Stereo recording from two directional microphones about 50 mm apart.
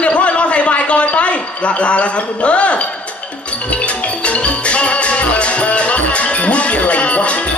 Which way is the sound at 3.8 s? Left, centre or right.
Left.